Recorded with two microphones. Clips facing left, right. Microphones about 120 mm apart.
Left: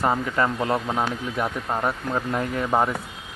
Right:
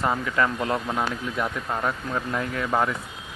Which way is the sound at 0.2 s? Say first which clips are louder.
Left 1 dB; 25° left (ahead or behind).